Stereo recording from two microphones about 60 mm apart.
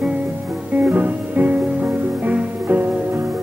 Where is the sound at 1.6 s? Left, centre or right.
Centre.